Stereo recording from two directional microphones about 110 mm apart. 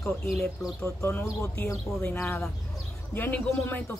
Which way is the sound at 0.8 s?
25° left (ahead or behind).